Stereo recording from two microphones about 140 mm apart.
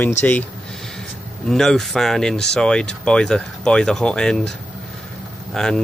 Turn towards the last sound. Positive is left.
turn(degrees=5)  # may be behind; listen again after turning